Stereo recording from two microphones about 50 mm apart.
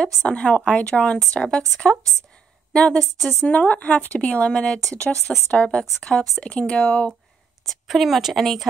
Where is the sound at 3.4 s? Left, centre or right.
Left.